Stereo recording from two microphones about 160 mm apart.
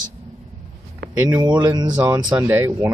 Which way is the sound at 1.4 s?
25° right (ahead or behind).